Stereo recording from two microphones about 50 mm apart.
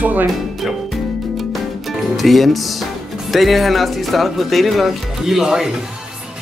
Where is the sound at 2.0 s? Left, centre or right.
Centre.